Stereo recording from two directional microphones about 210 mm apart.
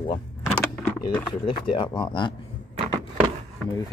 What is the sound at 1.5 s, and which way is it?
Speech, 20° left (ahead or behind).